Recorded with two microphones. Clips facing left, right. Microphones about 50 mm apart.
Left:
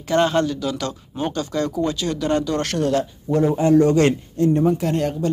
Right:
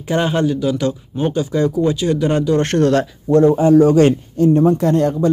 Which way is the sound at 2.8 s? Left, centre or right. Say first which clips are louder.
Right 4 dB; right.